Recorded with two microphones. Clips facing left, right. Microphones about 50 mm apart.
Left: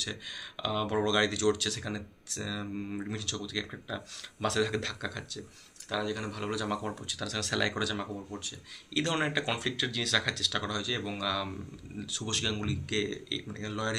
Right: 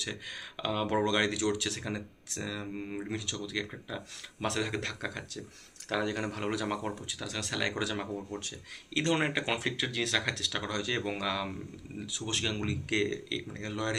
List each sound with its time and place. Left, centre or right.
0.0 s speech: right
0.9 s speech: right
5.9 s speech: right
6.6 s speech: right
7.5 s speech: centre
7.8 s speech: right
9.2 s speech: right
10.7 s speech: right; by 12.5 s centre
12.5 s speech: right